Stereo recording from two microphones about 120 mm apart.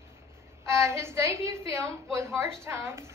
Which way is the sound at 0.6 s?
25° right (ahead or behind).